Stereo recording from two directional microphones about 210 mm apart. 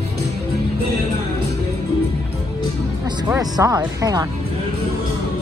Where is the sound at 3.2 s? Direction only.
15° right (ahead or behind).